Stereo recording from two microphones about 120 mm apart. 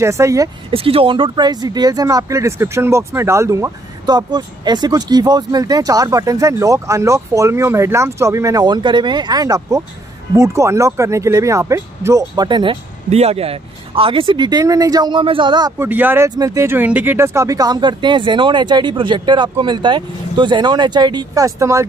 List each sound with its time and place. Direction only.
0.0 s speech: 25° right (ahead or behind)
0.7 s speech: 50° right (ahead or behind); by 12.4 s 25° right (ahead or behind)
12.4 s speech: 40° right (ahead or behind)
13.1 s speech: 60° right (ahead or behind); by 15.7 s 40° right (ahead or behind)
15.8 s speech: 15° right (ahead or behind)